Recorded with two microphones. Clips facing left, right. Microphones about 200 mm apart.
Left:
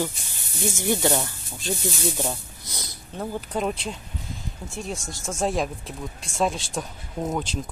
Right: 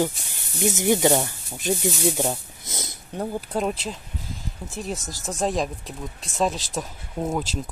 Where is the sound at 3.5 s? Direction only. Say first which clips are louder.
Right 1 dB; 5° right (ahead or behind).